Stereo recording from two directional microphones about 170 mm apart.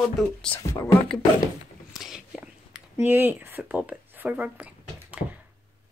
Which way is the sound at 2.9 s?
15° right (ahead or behind).